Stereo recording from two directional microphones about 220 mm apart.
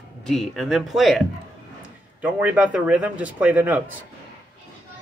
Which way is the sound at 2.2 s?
5° right (ahead or behind).